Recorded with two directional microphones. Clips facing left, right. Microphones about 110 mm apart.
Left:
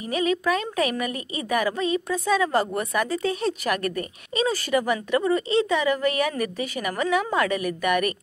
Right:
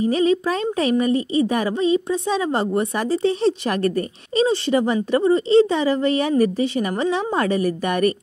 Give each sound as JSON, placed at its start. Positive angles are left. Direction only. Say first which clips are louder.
{"t": 0.0, "sound": "a woman's voice", "louder": "right 6 dB", "side_deg": -30}